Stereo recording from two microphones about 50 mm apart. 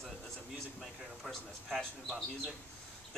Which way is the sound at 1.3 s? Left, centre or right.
Centre.